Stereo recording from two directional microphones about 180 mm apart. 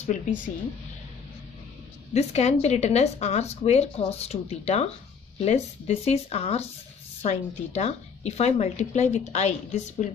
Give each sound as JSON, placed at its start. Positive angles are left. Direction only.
{"t": 0.0, "sound": "speech", "side_deg": 45}
{"t": 2.1, "sound": "a woman's voice", "side_deg": 35}